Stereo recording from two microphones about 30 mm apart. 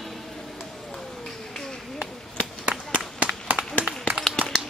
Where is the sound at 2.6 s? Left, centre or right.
Right.